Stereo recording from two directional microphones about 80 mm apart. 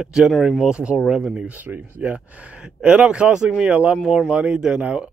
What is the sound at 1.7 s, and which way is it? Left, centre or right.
Speech, right.